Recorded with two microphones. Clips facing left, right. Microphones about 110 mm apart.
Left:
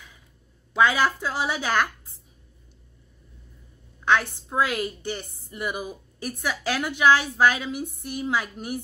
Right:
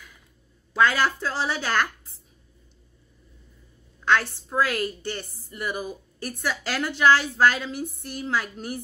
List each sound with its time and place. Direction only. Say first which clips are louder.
0.7 s a woman's voice: left 1 dB; 15° left (ahead or behind)
4.0 s a woman's voice: even; 15° left (ahead or behind)